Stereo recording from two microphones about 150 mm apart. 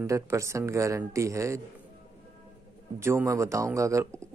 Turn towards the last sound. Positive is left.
turn(degrees=-20)  # may be behind; listen again after turning